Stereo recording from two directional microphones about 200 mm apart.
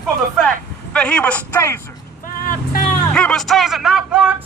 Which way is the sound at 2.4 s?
40° left (ahead or behind).